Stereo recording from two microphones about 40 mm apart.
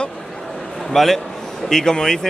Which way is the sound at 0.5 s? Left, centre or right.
Centre.